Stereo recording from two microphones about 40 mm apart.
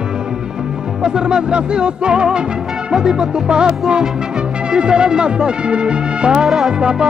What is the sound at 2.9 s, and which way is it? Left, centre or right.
Music, centre.